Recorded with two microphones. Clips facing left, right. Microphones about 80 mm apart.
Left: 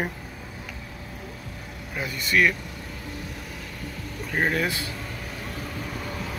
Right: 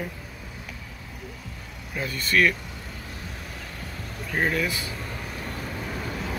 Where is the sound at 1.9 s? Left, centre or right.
Centre.